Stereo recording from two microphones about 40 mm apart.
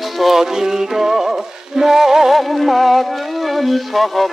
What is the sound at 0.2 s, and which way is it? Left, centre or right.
Music, centre.